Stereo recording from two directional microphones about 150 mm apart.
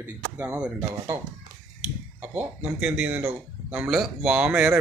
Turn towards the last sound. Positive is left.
turn(degrees=-5)  # may be behind; listen again after turning